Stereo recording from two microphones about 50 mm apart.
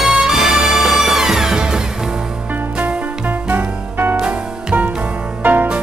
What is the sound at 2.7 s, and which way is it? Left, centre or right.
Music, right.